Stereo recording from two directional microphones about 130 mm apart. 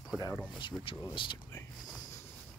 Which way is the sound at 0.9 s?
40° left (ahead or behind).